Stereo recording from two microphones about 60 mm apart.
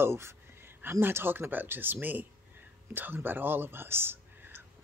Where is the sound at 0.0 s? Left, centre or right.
Right.